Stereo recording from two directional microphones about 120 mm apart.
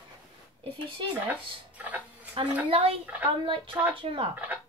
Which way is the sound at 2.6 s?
50° right (ahead or behind).